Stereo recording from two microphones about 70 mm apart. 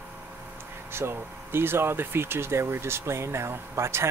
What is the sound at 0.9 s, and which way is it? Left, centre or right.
Speech, right.